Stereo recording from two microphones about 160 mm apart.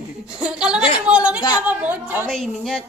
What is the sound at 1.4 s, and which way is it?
Speech, 25° left (ahead or behind).